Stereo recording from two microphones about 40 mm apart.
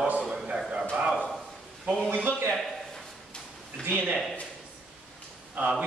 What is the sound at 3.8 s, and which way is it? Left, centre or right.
Speech, right.